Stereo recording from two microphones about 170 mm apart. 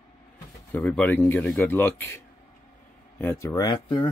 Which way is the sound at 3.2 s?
15° left (ahead or behind).